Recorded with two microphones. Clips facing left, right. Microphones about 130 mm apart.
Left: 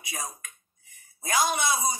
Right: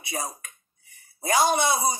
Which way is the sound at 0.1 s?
35° right (ahead or behind).